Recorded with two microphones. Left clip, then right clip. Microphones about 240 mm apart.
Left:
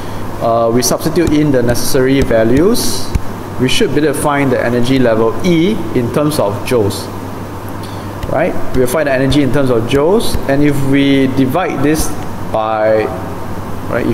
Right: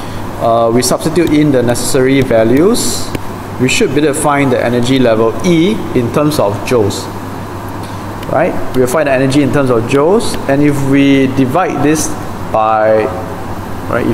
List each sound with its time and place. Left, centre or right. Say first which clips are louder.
0.5 s speech: right 2 dB; centre
8.4 s speech: right 2 dB; centre